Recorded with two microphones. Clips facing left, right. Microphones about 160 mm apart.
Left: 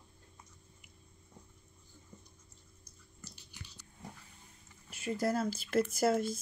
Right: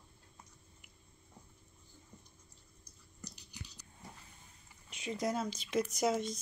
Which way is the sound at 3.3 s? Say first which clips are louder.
Right 2 dB; 40° right (ahead or behind).